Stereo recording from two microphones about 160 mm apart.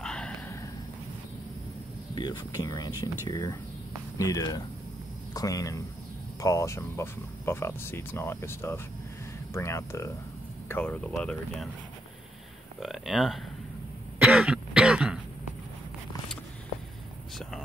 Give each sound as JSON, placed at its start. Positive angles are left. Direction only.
{"t": 0.0, "sound": "a sound", "side_deg": 5}
{"t": 2.1, "sound": "speech", "side_deg": 25}
{"t": 12.8, "sound": "speech", "side_deg": 0}
{"t": 14.2, "sound": "throat clearing", "side_deg": -5}